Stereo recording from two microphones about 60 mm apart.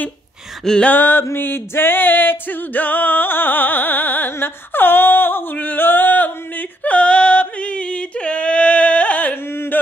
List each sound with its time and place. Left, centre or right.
0.8 s music: left
6.8 s yodeling: left
9.5 s a sound: left